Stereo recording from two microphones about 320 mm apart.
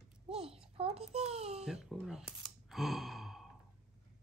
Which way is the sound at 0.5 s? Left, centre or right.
Centre.